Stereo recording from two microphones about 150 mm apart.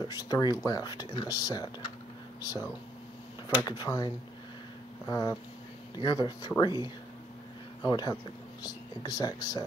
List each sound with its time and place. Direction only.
0.0 s speech: 25° left (ahead or behind)
7.8 s speech: 25° left (ahead or behind)